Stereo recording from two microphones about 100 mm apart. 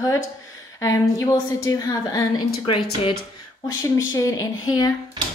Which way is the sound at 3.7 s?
30° left (ahead or behind).